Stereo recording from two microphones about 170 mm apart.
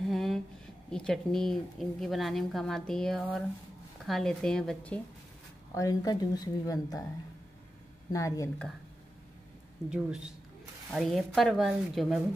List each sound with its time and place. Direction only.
0.1 s a sound: centre (ahead or behind)
0.8 s a woman's voice: 5° left (ahead or behind)
5.8 s speech: 20° left (ahead or behind)
8.1 s speech: 20° left (ahead or behind)
9.8 s a woman's voice: 5° right (ahead or behind)